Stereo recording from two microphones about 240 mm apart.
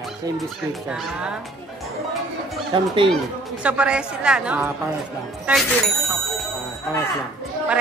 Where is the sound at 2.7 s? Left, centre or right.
Centre.